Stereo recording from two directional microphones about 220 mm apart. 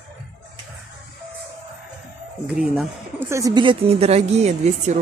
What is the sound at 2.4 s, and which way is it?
Speech, 5° right (ahead or behind).